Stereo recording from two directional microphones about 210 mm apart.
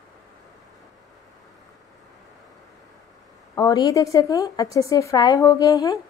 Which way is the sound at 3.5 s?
20° left (ahead or behind).